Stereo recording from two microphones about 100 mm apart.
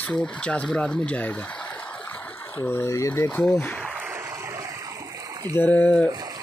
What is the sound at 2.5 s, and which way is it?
Speech, 20° left (ahead or behind).